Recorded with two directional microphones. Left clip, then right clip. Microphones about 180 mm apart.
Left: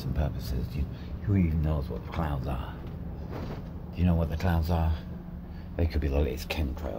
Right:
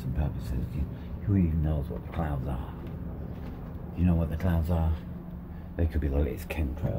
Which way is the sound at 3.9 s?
15° right (ahead or behind).